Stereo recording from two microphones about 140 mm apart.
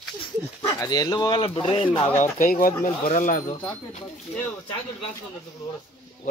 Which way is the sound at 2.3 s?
85° left.